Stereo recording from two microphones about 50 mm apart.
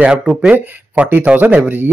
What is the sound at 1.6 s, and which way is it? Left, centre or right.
Speech, right.